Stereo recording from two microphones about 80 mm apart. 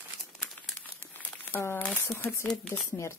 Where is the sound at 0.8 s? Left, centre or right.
Left.